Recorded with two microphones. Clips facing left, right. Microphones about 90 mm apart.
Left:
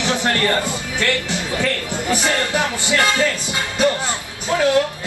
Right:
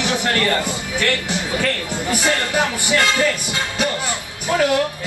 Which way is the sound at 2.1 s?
20° left (ahead or behind).